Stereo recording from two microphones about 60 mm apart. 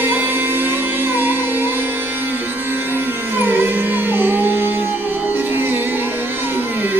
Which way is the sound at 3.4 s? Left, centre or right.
Right.